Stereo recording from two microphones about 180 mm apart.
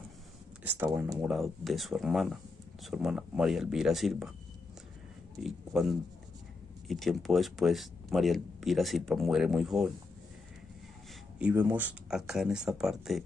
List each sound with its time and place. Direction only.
0.7 s speech: 15° right (ahead or behind)
1.2 s speech: centre (ahead or behind)
5.4 s speech: centre (ahead or behind)
11.3 s speech: 10° right (ahead or behind)